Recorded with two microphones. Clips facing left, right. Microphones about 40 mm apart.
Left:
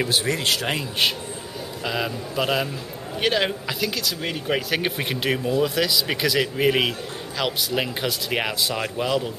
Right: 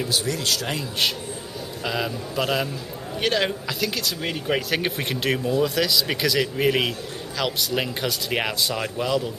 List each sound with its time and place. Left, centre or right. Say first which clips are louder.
0.1 s speech: left 2 dB; left
1.9 s speech: even; centre
3.9 s speech: even; centre